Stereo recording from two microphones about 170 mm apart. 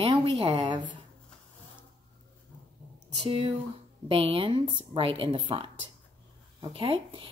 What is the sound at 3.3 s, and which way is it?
Speech, 30° right (ahead or behind).